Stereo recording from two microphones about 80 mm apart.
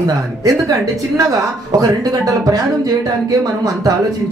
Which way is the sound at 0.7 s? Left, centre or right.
Right.